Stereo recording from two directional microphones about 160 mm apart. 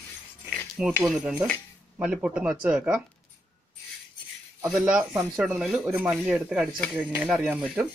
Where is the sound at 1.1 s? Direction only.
5° right (ahead or behind).